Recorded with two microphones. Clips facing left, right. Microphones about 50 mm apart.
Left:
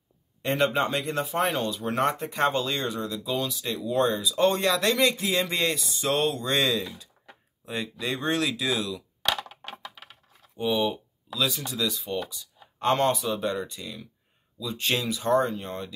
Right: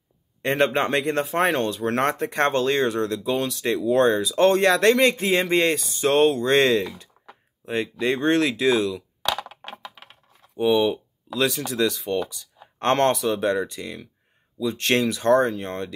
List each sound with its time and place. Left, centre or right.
0.4 s speech: right
7.6 s speech: right
9.5 s a sound: right
10.5 s speech: right
12.3 s speech: right